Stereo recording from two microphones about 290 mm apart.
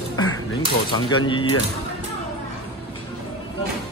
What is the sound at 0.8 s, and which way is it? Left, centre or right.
Speech, centre.